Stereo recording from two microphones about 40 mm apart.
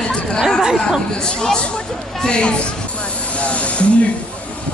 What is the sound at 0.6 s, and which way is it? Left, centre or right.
Chatter, centre.